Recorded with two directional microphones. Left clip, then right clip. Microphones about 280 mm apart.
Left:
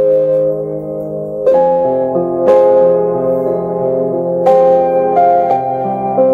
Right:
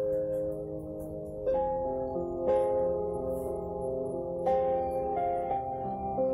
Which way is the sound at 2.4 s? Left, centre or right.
Left.